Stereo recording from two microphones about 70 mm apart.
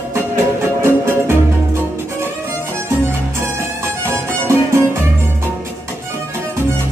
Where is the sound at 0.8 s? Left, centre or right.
Right.